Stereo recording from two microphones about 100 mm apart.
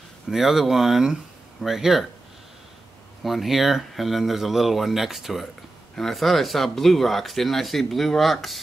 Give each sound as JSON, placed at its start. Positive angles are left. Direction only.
{"t": 0.3, "sound": "speech", "side_deg": -5}
{"t": 3.3, "sound": "speech", "side_deg": 0}